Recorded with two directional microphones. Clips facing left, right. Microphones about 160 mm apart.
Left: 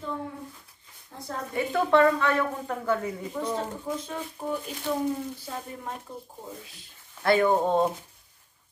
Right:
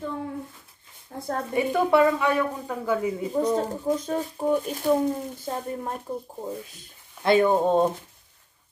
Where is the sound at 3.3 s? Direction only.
40° right (ahead or behind).